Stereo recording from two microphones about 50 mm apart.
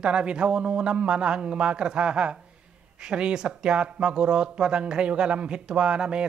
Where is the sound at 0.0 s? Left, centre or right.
Centre.